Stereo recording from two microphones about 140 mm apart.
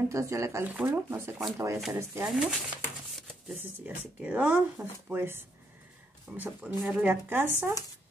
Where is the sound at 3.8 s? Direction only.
10° right (ahead or behind).